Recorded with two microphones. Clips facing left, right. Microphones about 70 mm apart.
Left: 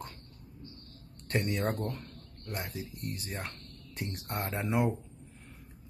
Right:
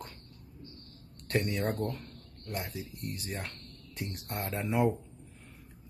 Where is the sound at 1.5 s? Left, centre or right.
Centre.